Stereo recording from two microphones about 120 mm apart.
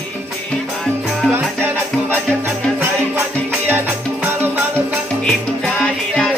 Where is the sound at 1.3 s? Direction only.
15° right (ahead or behind).